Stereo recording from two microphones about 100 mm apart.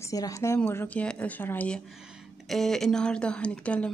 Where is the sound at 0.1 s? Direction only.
35° left (ahead or behind).